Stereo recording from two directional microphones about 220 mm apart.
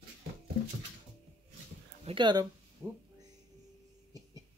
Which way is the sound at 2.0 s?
20° right (ahead or behind).